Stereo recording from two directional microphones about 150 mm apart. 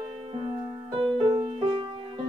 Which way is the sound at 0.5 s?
30° right (ahead or behind).